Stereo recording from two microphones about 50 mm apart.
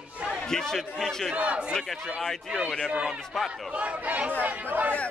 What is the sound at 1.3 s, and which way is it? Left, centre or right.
Speech, right.